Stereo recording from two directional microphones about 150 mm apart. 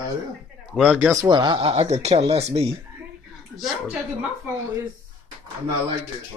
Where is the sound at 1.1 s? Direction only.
25° right (ahead or behind); by 2.4 s 45° right (ahead or behind).